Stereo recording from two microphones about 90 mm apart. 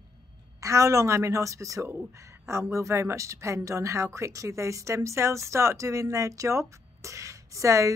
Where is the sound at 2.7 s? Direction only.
30° right (ahead or behind).